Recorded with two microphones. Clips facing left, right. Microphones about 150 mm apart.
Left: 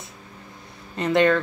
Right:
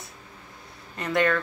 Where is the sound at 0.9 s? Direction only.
25° left (ahead or behind).